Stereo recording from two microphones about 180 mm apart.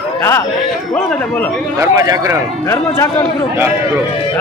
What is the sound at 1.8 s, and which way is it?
Speech, 15° right (ahead or behind).